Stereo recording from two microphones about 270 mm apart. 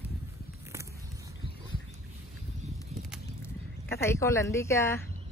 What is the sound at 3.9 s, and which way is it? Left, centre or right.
Speech, centre.